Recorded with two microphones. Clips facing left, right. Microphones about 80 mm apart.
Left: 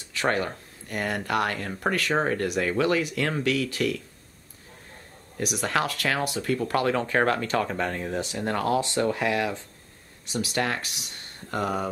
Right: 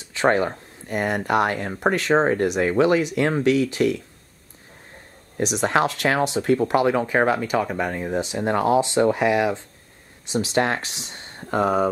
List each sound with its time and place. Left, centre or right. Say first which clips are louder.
0.0 s speech: right 6 dB; right
5.4 s speech: right 6 dB; right